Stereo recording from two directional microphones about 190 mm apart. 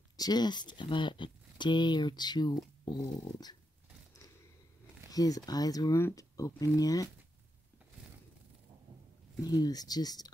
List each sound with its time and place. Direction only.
0.2 s speech: 20° left (ahead or behind)
5.1 s speech: 20° left (ahead or behind)
9.4 s speech: 20° left (ahead or behind)